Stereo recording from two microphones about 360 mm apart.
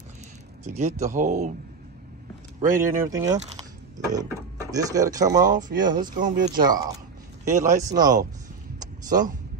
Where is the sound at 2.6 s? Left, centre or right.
Right.